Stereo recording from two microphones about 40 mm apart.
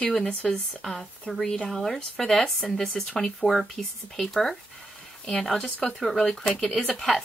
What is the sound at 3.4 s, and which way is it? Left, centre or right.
Speech, left.